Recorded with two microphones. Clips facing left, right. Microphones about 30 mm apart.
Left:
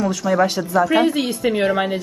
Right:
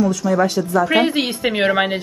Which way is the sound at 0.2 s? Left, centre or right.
Centre.